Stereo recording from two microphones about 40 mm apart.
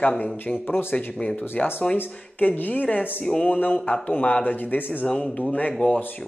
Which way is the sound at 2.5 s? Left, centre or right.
Left.